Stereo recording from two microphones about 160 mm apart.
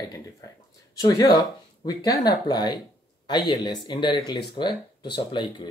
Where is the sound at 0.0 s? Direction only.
25° left (ahead or behind).